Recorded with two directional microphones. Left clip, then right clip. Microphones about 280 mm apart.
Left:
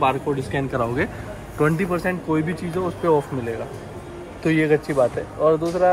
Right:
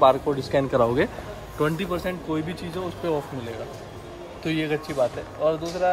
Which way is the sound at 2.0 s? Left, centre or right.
Centre.